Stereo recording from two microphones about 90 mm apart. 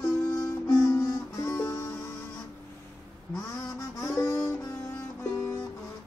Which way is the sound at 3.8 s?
40° left (ahead or behind).